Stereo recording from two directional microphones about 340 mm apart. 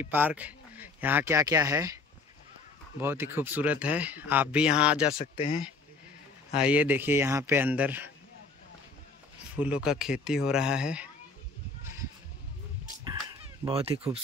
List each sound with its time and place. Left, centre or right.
0.0 s speech: centre
3.0 s speech: centre
5.1 s speech: centre
6.5 s speech: centre
9.6 s speech: centre
13.0 s a sound: centre